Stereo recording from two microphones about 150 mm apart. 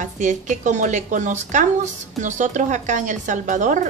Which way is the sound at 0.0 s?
55° right (ahead or behind).